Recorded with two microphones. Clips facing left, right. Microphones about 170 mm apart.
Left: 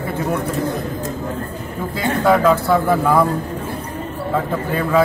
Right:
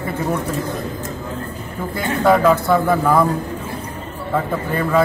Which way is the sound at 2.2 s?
Centre (ahead or behind).